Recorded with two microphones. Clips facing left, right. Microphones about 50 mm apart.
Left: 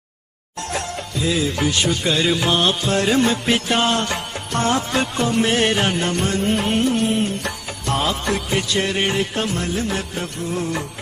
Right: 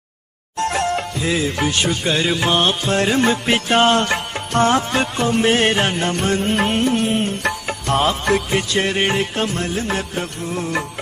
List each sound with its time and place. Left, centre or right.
0.6 s music: right